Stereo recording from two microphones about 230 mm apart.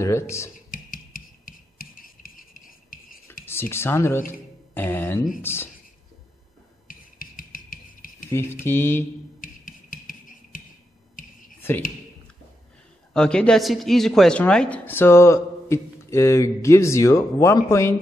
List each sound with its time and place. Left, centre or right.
0.0 s speech: centre
0.7 s a sound: left
3.4 s speech: centre
6.9 s music: left
8.3 s speech: centre
9.4 s music: left
11.6 s speech: centre
13.1 s speech: centre